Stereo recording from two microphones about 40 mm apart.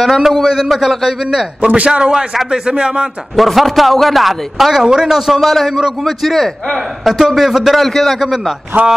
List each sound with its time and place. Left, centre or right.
0.2 s a man's voice: centre
3.3 s a man's voice: centre
4.8 s a man's voice: centre
7.9 s a man's voice: centre
8.2 s a man's voice: centre